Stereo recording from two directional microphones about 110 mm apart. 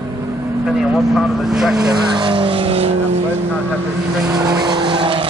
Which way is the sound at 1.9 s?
45° right (ahead or behind).